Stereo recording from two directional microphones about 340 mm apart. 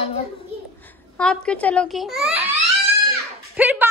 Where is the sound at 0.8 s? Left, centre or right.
Centre.